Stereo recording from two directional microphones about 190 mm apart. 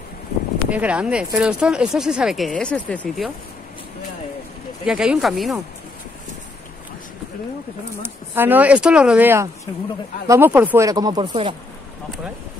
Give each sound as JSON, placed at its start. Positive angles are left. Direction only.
{"t": 0.7, "sound": "speech", "side_deg": -5}
{"t": 4.8, "sound": "speech", "side_deg": -5}
{"t": 8.0, "sound": "speech", "side_deg": -10}